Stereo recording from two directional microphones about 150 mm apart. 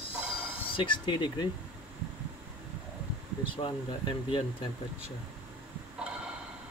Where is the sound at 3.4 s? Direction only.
35° left (ahead or behind).